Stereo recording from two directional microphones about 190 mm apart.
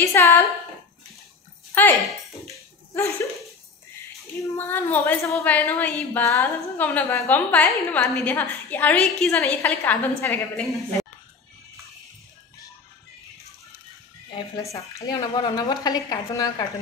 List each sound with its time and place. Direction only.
0.0 s a woman's voice: 15° left (ahead or behind)
1.8 s a woman's voice: 10° left (ahead or behind)
4.6 s a woman's voice: 10° left (ahead or behind)
14.5 s a woman's voice: 15° left (ahead or behind)